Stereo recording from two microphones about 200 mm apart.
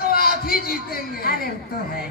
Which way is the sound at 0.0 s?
50° left (ahead or behind).